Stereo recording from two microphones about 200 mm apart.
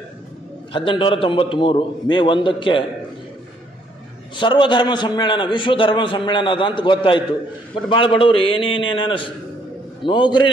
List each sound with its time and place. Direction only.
0.7 s a man's voice: 25° left (ahead or behind)
4.4 s a man's voice: 25° left (ahead or behind)